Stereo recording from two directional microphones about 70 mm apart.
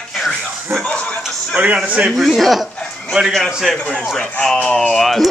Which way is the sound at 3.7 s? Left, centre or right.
Centre.